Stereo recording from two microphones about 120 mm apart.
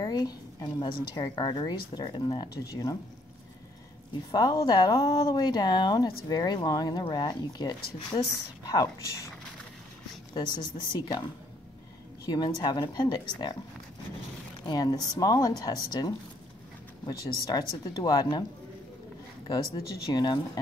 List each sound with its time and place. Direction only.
0.0 s speech: 35° left (ahead or behind)
2.7 s speech: 30° left (ahead or behind)
4.3 s speech: 30° left (ahead or behind)
10.3 s speech: 40° left (ahead or behind)
12.3 s speech: 35° left (ahead or behind)
14.7 s speech: 35° left (ahead or behind)
20.1 s speech: 35° left (ahead or behind)